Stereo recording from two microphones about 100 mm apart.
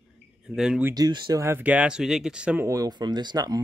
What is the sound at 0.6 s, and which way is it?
Speech, 5° right (ahead or behind).